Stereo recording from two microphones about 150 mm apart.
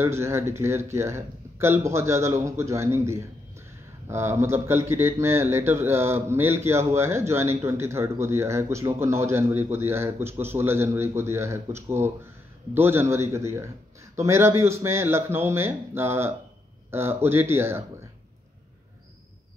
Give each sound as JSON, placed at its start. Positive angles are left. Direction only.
{"t": 0.0, "sound": "speech", "side_deg": -15}